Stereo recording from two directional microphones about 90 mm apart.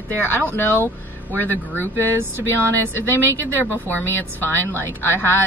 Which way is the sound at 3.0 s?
25° right (ahead or behind).